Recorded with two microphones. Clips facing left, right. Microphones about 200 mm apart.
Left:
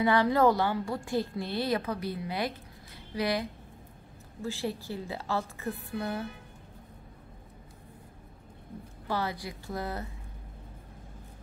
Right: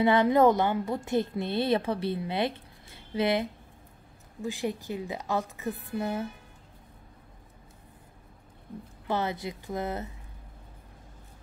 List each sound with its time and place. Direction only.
0.0 s a woman's voice: 20° right (ahead or behind)
9.0 s a woman's voice: 20° right (ahead or behind)